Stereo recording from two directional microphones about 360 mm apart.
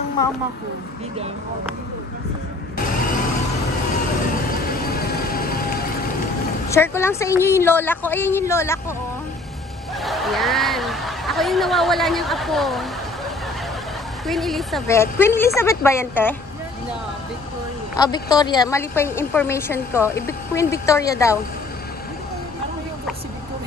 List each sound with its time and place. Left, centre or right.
4.6 s vehicle: left
6.7 s a woman's voice: centre
10.0 s speech: centre
14.2 s a woman's voice: centre
17.9 s a woman's voice: centre